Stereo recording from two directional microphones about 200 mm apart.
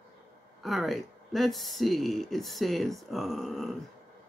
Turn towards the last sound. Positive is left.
turn(degrees=0)  # may be behind; listen again after turning